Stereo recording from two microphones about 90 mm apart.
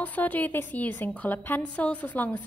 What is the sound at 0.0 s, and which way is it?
A woman's voice, 20° left (ahead or behind).